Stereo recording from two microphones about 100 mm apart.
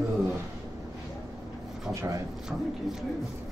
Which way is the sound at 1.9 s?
30° right (ahead or behind).